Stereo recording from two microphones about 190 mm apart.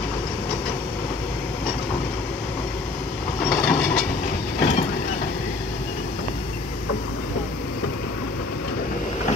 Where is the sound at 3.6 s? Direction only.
Centre (ahead or behind).